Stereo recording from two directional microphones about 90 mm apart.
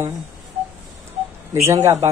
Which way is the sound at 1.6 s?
30° right (ahead or behind).